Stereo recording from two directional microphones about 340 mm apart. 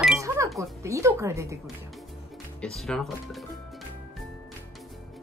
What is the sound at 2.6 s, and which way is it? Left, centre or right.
Speech, centre.